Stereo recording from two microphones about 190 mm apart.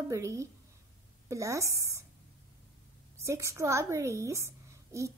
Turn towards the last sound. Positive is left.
turn(degrees=-15)  # may be behind; listen again after turning